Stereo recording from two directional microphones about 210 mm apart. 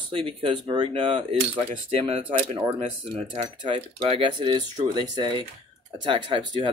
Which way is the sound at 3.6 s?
25° right (ahead or behind).